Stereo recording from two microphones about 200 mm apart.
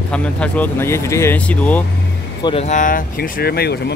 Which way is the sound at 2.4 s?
30° left (ahead or behind).